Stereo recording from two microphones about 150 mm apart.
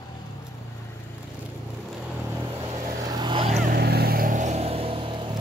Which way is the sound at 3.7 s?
90° right.